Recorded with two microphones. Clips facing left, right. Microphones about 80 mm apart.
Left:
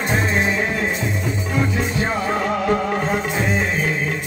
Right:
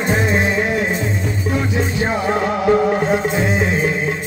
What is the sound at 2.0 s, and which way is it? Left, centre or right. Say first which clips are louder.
Music: right 3 dB; centre.